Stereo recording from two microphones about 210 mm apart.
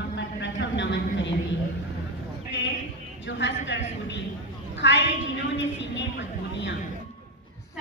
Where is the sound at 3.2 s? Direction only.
55° left (ahead or behind).